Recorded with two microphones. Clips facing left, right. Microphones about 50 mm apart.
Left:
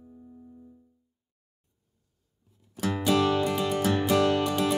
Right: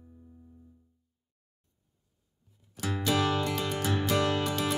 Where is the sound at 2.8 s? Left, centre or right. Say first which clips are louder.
Left 4 dB; centre.